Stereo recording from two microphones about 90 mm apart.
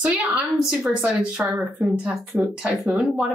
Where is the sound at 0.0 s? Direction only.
10° right (ahead or behind).